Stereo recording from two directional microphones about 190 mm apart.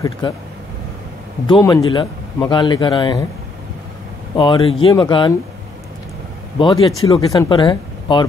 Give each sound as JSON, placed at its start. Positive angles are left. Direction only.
{"t": 1.5, "sound": "a man's voice", "side_deg": 20}
{"t": 4.4, "sound": "a man's voice", "side_deg": 25}
{"t": 6.6, "sound": "a man's voice", "side_deg": 30}